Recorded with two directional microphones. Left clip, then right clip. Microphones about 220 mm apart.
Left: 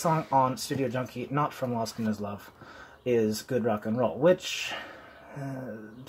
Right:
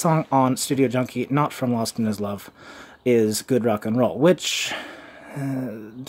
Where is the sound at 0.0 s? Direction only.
45° right (ahead or behind).